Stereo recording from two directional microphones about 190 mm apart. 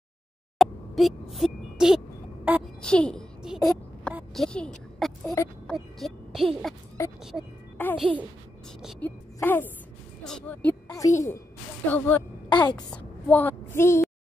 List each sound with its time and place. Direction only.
0.6 s a sound: centre (ahead or behind)
2.4 s a child's voice: 10° right (ahead or behind)
2.8 s a sound: 5° left (ahead or behind)
5.7 s a child's voice: centre (ahead or behind)
7.7 s music: 10° left (ahead or behind)
9.0 s a woman's voice: 10° left (ahead or behind)
12.4 s a woman's voice: 20° left (ahead or behind)
12.7 s a woman's voice: 5° left (ahead or behind)